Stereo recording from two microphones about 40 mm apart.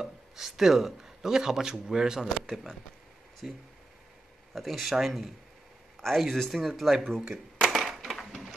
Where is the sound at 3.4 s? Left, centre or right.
Centre.